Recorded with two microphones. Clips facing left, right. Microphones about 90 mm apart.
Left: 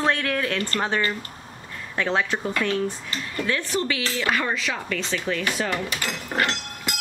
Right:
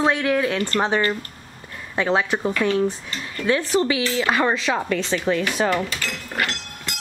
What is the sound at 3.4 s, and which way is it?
Speech, 20° right (ahead or behind).